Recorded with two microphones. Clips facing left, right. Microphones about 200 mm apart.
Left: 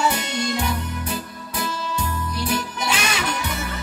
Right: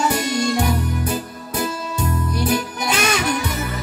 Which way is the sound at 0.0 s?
45° right (ahead or behind).